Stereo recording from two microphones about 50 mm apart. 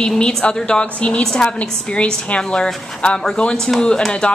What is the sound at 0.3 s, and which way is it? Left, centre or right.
A woman's voice, centre.